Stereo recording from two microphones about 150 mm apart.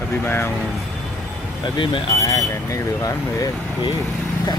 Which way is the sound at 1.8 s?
35° left (ahead or behind).